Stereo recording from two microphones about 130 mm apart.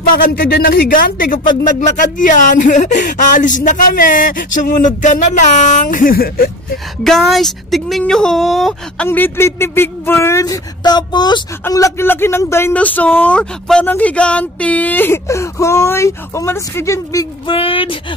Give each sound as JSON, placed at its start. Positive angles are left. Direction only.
{"t": 0.2, "sound": "speech", "side_deg": 90}
{"t": 1.7, "sound": "speech", "side_deg": 70}
{"t": 7.0, "sound": "speech", "side_deg": 0}
{"t": 9.0, "sound": "speech", "side_deg": 15}
{"t": 11.6, "sound": "speech", "side_deg": 20}
{"t": 17.5, "sound": "speech", "side_deg": 45}